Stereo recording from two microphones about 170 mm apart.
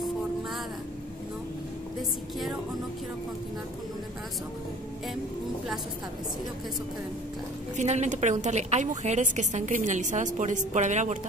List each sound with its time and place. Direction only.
7.7 s a woman's voice: 40° right (ahead or behind)